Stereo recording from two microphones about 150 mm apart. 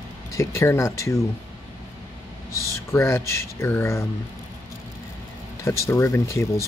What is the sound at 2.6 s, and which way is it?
Speech, 20° left (ahead or behind).